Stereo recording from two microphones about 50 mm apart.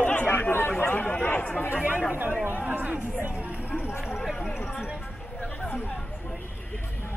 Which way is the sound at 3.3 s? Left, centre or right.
Right.